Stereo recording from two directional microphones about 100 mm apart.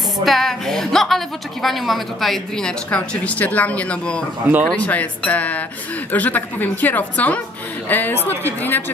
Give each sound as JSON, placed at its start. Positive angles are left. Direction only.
{"t": 0.2, "sound": "a woman's voice", "side_deg": 0}